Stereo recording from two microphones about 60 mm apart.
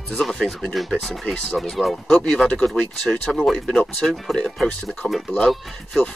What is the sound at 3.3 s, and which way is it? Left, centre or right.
Speech, centre.